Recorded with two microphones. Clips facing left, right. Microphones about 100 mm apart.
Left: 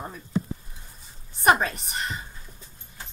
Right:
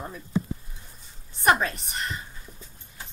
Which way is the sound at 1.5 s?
5° left (ahead or behind).